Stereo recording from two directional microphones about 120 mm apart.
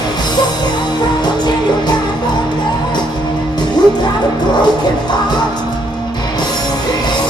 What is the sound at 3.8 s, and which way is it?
Music, 35° left (ahead or behind).